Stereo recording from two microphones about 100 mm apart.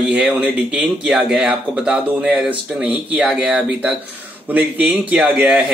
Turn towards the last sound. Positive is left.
turn(degrees=-5)  # may be behind; listen again after turning